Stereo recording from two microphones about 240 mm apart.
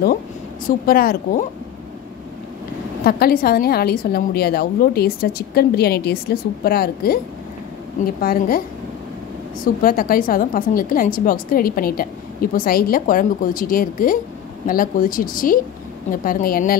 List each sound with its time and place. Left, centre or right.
0.7 s a woman's voice: left
3.0 s a woman's voice: left